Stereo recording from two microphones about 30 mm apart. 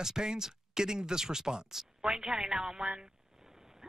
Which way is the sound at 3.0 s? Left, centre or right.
Centre.